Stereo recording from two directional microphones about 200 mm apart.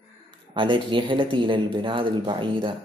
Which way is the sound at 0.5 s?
25° right (ahead or behind).